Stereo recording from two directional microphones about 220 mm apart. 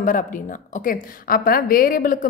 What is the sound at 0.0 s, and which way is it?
A woman's voice, 35° left (ahead or behind).